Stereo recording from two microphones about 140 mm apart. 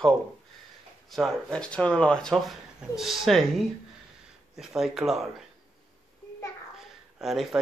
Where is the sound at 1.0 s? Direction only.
Centre (ahead or behind).